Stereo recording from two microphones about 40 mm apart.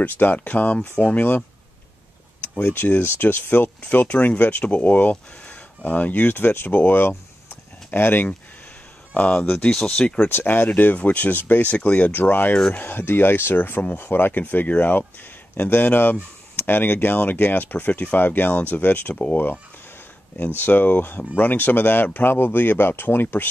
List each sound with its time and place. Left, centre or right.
0.0 s speech: left
0.9 s speech: left
2.7 s speech: left
6.7 s speech: left
9.4 s speech: left
9.7 s speech: centre
10.2 s speech: left
12.1 s speech: left
12.7 s speech: left
19.3 s speech: left